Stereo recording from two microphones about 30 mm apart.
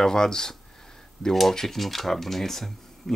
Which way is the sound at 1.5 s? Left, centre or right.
Centre.